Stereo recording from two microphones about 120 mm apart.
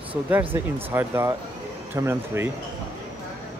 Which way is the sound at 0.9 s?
20° right (ahead or behind).